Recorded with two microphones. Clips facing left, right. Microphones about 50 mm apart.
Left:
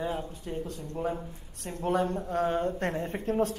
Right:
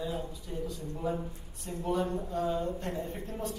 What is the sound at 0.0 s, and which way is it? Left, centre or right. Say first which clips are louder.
Speech: left 3 dB; left.